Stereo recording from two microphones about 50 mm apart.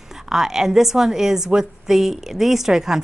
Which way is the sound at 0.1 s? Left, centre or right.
Centre.